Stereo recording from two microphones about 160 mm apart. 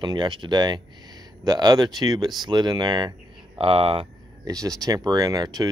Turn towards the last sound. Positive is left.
turn(degrees=-25)  # may be behind; listen again after turning